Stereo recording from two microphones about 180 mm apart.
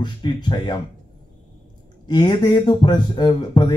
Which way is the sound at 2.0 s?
25° left (ahead or behind).